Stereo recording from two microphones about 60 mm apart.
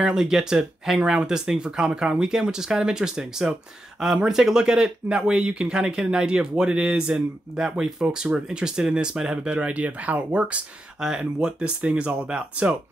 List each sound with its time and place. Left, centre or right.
0.0 s speech: centre
11.0 s speech: centre